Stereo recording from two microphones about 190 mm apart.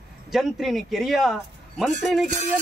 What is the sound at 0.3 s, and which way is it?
Speech, centre (ahead or behind).